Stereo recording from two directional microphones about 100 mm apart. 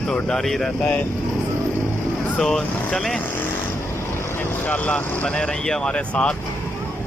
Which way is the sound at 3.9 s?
25° left (ahead or behind).